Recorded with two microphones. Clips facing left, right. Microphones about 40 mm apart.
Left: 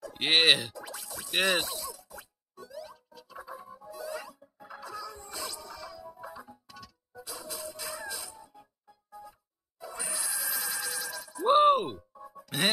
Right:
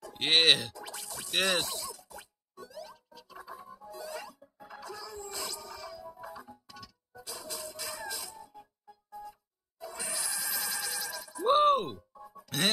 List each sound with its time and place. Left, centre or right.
0.1 s speech: centre
0.8 s music: centre
1.3 s a sound: centre
3.7 s music: left
4.0 s music: centre
6.2 s music: centre
10.2 s bleat: centre